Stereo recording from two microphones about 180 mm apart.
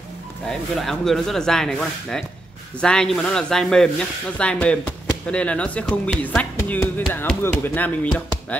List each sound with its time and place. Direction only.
0.5 s speech: centre (ahead or behind)